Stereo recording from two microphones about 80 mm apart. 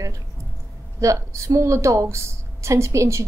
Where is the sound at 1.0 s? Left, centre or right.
Right.